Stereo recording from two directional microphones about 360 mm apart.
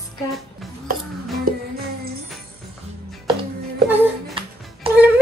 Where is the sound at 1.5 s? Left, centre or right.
Right.